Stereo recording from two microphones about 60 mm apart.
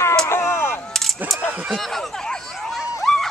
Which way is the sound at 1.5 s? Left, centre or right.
Right.